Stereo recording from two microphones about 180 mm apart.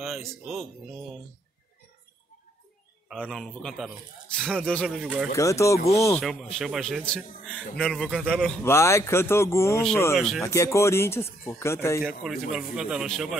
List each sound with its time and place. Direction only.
0.0 s a man's voice: centre (ahead or behind)
3.1 s a man's voice: centre (ahead or behind)
5.3 s speech: 15° left (ahead or behind)
6.2 s a man's voice: centre (ahead or behind)
8.6 s speech: 15° left (ahead or behind)
10.1 s a man's voice: centre (ahead or behind)
10.4 s speech: 15° left (ahead or behind)
12.2 s a man's voice: 5° right (ahead or behind)